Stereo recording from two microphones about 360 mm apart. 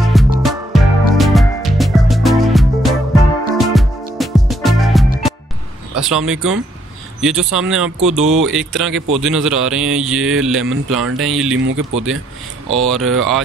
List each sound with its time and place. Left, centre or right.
0.0 s music: centre
5.9 s speech: centre
11.5 s speech: right
12.7 s speech: centre